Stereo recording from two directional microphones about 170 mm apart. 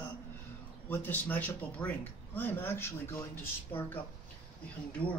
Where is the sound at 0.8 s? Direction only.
10° left (ahead or behind).